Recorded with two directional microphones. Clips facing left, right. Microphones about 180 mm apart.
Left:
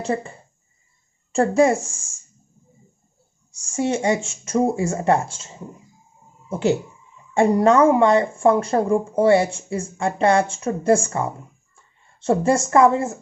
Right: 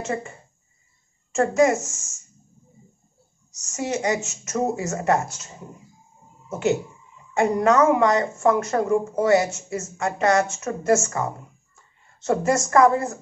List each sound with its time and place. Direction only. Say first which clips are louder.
0.0 s speech: left 4 dB; 35° left (ahead or behind)
3.5 s speech: left 4 dB; 30° left (ahead or behind)
6.5 s speech: left 2 dB; 30° left (ahead or behind)